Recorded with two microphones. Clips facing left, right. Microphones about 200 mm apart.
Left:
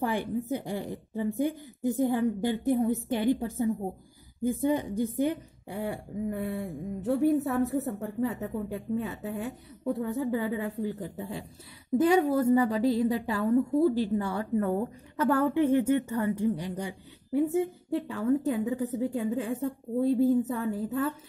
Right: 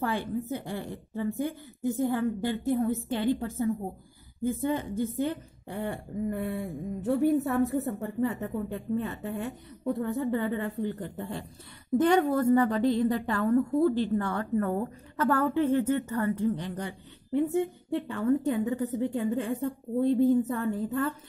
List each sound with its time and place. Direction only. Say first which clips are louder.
0.0 s a woman's voice: left 1 dB; 15° left (ahead or behind)
17.4 s a woman's voice: left 1 dB; centre (ahead or behind)